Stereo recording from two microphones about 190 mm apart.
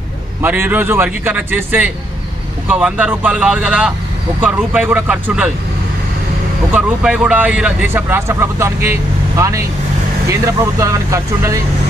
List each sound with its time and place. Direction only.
0.4 s speech: 10° right (ahead or behind)
6.7 s speech: 5° right (ahead or behind)